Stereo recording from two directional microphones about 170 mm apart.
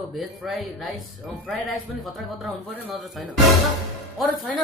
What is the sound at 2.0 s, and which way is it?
Speech, centre (ahead or behind).